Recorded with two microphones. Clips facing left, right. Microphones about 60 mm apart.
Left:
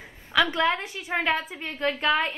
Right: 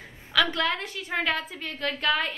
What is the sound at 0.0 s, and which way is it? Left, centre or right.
A woman's voice, centre.